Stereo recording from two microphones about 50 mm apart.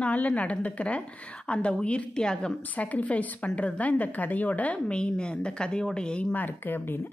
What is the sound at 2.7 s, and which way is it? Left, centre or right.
A woman's voice, left.